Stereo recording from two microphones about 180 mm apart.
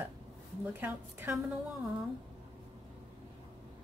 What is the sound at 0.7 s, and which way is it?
Speech, 10° right (ahead or behind).